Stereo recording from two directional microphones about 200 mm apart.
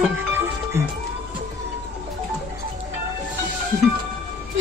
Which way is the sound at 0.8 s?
15° right (ahead or behind).